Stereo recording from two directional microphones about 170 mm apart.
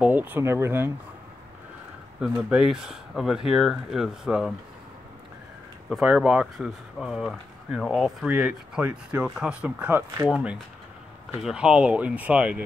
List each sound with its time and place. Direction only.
0.0 s speech: 10° right (ahead or behind)
2.1 s speech: 5° right (ahead or behind)
5.9 s speech: 5° right (ahead or behind)